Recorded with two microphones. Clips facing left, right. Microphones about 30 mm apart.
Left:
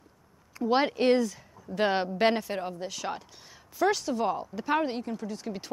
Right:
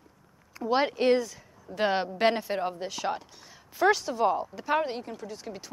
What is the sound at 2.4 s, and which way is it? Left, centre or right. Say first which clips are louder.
Speech: right 3 dB; centre.